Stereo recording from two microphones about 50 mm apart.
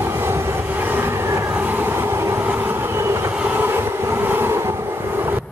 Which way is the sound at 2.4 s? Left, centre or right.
Right.